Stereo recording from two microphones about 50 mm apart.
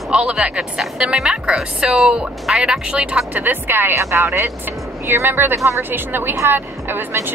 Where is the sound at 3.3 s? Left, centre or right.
Right.